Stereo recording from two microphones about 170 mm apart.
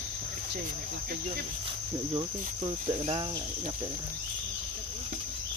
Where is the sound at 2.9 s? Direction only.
30° right (ahead or behind).